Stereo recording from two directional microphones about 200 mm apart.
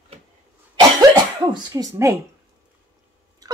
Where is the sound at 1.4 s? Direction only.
20° right (ahead or behind).